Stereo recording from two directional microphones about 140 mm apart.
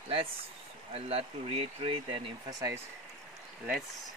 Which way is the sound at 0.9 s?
45° right (ahead or behind).